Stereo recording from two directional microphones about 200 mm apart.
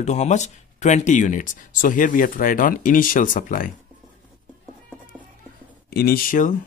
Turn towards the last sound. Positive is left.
turn(degrees=40)  # may be behind; listen again after turning